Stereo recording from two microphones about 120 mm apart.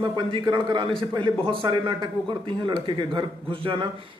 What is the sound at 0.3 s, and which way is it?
A man's voice, 40° right (ahead or behind).